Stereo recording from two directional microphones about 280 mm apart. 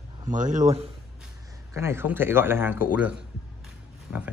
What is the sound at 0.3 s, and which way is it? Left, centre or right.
Speech, right.